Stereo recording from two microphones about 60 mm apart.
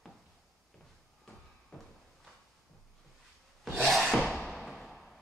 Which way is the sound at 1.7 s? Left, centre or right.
Centre.